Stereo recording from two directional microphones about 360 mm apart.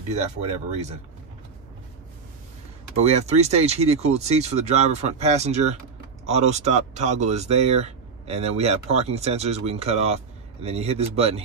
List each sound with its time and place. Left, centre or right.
3.0 s speech: centre